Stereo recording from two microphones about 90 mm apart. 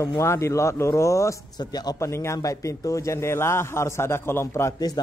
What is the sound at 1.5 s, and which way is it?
Speech, 50° left (ahead or behind).